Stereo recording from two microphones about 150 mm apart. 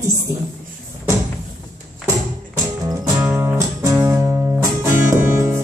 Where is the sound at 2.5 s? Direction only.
20° right (ahead or behind).